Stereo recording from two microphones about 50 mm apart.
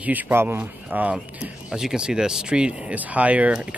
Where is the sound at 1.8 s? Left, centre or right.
Centre.